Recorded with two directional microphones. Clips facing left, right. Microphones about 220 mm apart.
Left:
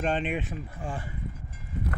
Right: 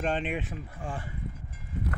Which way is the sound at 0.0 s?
Centre (ahead or behind).